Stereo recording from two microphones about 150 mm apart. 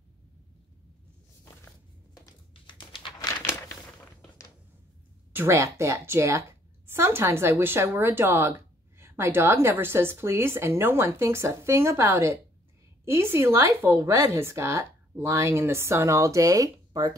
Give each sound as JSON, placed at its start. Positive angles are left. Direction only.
{"t": 2.6, "sound": "a sound", "side_deg": 35}
{"t": 3.2, "sound": "crumpling", "side_deg": 20}
{"t": 5.3, "sound": "speech", "side_deg": -15}